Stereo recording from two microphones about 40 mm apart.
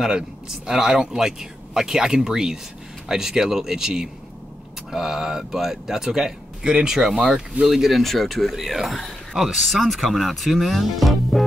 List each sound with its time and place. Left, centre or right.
0.0 s speech: centre
8.0 s speech: centre